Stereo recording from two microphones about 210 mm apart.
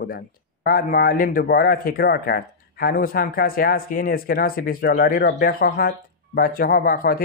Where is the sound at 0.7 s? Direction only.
45° left (ahead or behind).